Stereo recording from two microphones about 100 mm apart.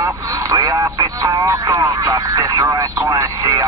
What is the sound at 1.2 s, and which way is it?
Speech, 35° right (ahead or behind).